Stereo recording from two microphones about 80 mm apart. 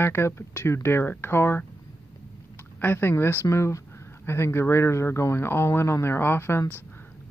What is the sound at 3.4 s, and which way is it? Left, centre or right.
Speech, left.